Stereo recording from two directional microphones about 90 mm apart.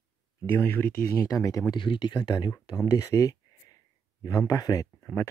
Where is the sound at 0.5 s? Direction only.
25° left (ahead or behind).